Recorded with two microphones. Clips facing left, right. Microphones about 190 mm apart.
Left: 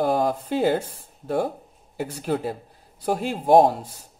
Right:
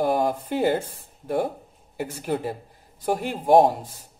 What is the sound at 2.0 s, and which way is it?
Speech, 15° right (ahead or behind).